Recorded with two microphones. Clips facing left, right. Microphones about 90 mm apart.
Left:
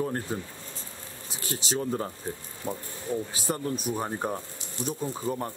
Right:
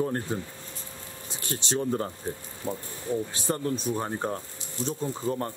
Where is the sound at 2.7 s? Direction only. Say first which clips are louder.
Right 1 dB; 20° left (ahead or behind).